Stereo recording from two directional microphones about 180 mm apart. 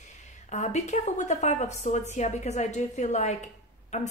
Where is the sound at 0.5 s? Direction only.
40° left (ahead or behind).